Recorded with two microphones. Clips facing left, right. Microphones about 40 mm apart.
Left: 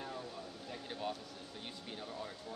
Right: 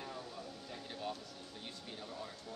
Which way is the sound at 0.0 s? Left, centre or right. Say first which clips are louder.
Left 1 dB; centre.